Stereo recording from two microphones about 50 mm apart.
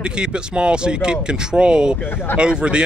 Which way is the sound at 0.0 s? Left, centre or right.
Centre.